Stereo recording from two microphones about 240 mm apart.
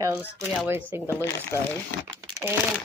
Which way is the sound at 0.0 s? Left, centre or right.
Centre.